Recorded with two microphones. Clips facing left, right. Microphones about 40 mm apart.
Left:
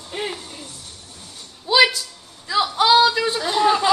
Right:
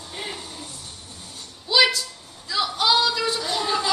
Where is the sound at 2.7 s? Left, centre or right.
Left.